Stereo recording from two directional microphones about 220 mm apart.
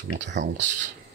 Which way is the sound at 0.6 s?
35° right (ahead or behind).